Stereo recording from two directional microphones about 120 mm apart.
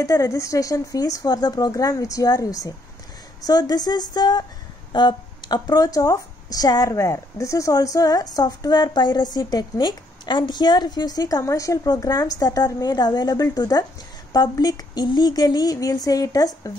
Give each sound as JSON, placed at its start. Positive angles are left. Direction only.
{"t": 0.0, "sound": "a woman's voice", "side_deg": 25}